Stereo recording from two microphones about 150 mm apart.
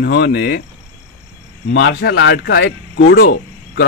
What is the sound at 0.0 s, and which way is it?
Speech, 90° left.